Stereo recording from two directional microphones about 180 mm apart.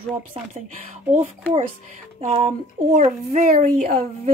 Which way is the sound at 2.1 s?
35° right (ahead or behind).